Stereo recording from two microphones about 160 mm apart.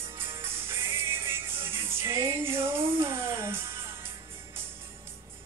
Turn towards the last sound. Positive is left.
turn(degrees=-15)  # may be behind; listen again after turning